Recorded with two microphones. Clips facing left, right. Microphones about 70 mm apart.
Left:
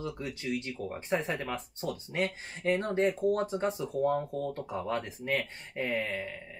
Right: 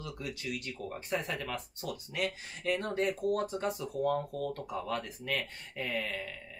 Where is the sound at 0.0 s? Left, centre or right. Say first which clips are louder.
Left 4 dB; left.